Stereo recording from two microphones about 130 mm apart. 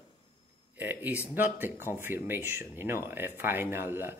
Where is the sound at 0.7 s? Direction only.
10° right (ahead or behind).